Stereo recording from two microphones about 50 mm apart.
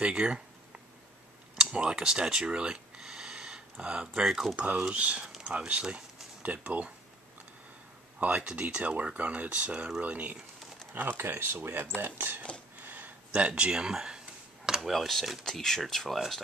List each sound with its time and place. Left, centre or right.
0.0 s speech: centre
1.6 s a sound: centre
4.1 s speech: centre
4.6 s speech: right
8.2 s speech: right
11.1 s speech: right
12.8 s a sound: right
13.3 s speech: right
14.7 s speech: centre